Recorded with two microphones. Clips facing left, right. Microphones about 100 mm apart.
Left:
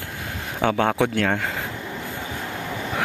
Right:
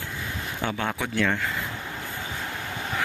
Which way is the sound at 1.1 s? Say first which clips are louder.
Left 3 dB; 65° left (ahead or behind).